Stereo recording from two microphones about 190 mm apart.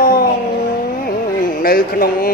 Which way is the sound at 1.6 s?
50° left (ahead or behind).